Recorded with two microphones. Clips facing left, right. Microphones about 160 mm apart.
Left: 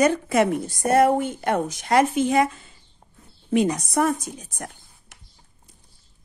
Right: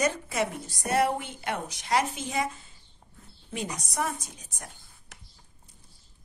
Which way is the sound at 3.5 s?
60° left (ahead or behind).